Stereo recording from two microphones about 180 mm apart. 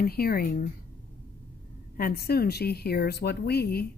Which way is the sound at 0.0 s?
55° left (ahead or behind).